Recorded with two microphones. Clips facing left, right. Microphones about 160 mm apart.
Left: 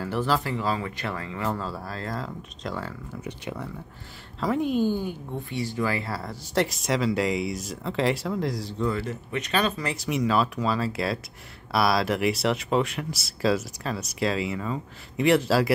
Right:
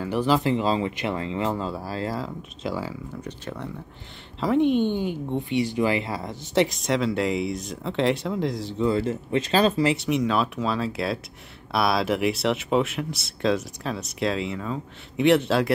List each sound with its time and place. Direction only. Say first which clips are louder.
0.1 s speech: right 5 dB; 15° right (ahead or behind)
2.0 s speech: right 3 dB; 5° right (ahead or behind)
3.2 s speech: left 3 dB; 10° left (ahead or behind)
4.9 s speech: right 4 dB; 20° right (ahead or behind)
6.5 s speech: right 3 dB; centre (ahead or behind)
8.8 s speech: right 5 dB; 30° right (ahead or behind)
9.9 s speech: right 1 dB; centre (ahead or behind)